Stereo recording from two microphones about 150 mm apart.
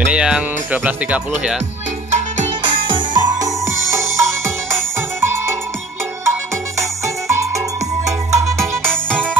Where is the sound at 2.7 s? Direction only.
35° right (ahead or behind).